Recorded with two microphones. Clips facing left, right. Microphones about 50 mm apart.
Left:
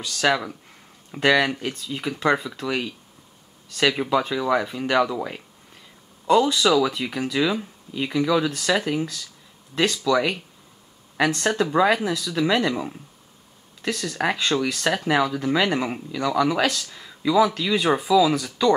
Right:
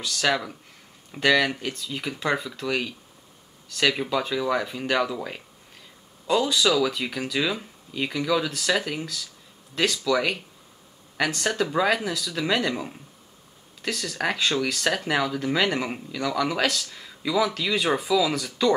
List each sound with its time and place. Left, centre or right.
0.0 s speech: centre
1.6 s speech: centre
10.1 s speech: centre
14.7 s speech: centre
15.0 s speech: centre